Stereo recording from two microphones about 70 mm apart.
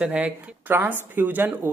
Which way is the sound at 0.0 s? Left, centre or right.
Right.